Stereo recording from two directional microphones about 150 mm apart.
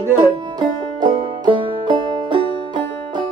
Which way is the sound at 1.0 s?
35° right (ahead or behind).